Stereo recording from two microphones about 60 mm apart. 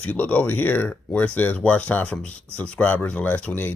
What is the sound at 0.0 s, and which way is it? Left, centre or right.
Speech, left.